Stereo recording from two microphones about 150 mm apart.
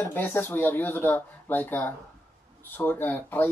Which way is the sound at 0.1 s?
15° left (ahead or behind).